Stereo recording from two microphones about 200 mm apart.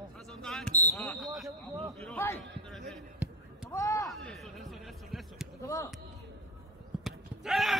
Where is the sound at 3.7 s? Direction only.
15° left (ahead or behind).